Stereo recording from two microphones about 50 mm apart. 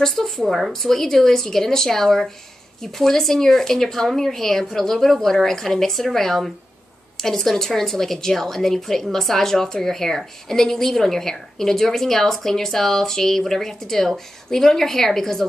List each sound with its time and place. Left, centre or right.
0.0 s a woman's voice: centre
0.4 s a woman's voice: centre